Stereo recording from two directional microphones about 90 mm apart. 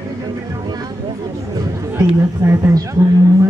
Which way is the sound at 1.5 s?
35° right (ahead or behind).